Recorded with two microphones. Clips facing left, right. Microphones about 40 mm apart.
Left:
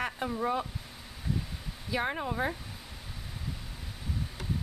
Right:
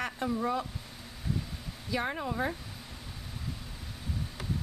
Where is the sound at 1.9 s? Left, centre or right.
Centre.